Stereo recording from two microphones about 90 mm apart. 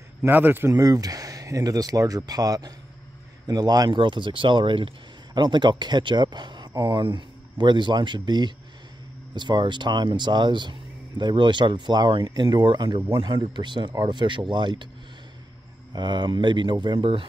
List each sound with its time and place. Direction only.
0.3 s speech: 20° right (ahead or behind)
0.7 s speech: 40° right (ahead or behind); by 14.9 s 60° right (ahead or behind)
15.9 s speech: 55° right (ahead or behind); by 17.3 s 75° right (ahead or behind)